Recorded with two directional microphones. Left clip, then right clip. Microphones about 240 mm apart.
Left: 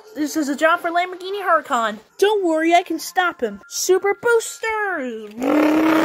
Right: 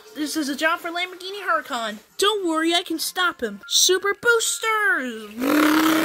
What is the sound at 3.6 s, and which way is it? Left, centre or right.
Speech, right.